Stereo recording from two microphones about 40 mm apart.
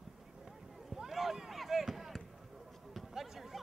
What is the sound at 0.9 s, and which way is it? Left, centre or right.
Run, centre.